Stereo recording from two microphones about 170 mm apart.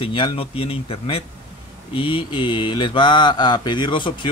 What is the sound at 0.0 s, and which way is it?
Speech, 30° left (ahead or behind).